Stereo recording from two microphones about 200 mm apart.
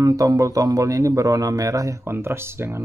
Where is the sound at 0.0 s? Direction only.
15° right (ahead or behind).